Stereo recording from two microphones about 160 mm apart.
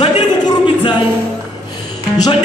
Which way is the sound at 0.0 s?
30° left (ahead or behind).